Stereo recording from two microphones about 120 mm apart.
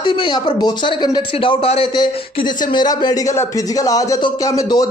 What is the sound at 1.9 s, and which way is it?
A man's voice, 35° left (ahead or behind).